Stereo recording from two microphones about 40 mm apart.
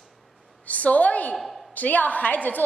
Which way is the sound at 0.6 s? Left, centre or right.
Left.